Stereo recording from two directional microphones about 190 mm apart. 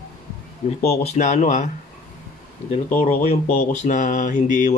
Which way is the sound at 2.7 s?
35° left (ahead or behind).